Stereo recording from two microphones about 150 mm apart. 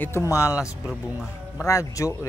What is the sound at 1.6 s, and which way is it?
Speech, 20° left (ahead or behind).